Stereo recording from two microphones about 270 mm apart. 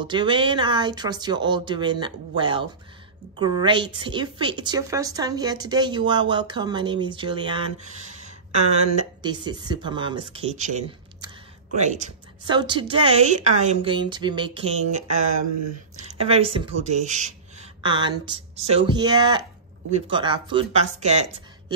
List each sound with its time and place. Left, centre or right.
0.0 s a woman's voice: centre
16.1 s a woman's voice: right